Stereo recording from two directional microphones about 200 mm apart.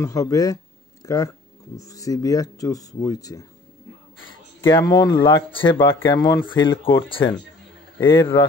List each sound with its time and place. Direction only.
0.0 s speech: 15° left (ahead or behind)
4.6 s speech: 20° left (ahead or behind)
8.0 s speech: 15° left (ahead or behind)